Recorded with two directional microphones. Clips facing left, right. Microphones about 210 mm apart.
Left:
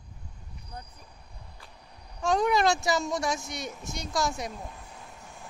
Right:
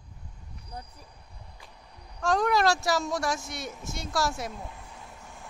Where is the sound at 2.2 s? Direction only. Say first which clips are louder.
Even; centre (ahead or behind).